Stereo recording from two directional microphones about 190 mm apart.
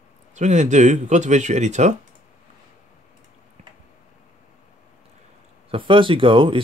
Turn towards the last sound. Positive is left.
turn(degrees=-25)  # may be behind; listen again after turning